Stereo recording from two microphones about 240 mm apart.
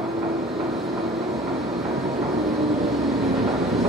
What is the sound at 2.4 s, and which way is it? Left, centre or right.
Train, centre.